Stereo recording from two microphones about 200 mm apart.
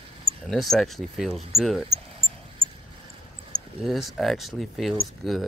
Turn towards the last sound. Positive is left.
turn(degrees=0)  # may be behind; listen again after turning